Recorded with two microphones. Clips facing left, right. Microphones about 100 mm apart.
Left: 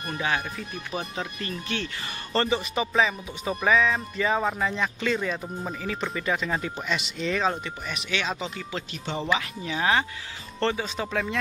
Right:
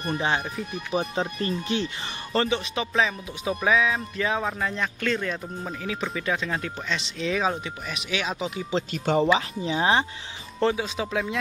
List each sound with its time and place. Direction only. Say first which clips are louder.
0.0 s speech: right 2 dB; 30° right (ahead or behind)
2.3 s speech: even; centre (ahead or behind)
8.9 s speech: right 10 dB; 45° right (ahead or behind)
9.3 s speech: right 4 dB; 25° right (ahead or behind)
10.6 s speech: right 2 dB; 5° right (ahead or behind)